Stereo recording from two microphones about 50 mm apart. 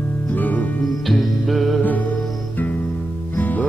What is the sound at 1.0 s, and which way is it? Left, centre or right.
Music, centre.